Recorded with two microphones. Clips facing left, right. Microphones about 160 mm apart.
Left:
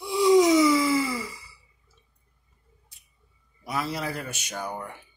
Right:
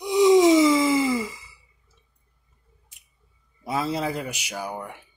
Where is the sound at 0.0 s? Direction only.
20° right (ahead or behind).